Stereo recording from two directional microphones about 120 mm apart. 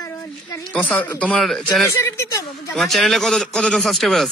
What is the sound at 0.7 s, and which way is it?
Speech, 15° left (ahead or behind).